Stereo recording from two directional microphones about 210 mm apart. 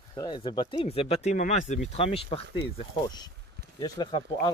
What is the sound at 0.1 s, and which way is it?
Speech, 20° left (ahead or behind).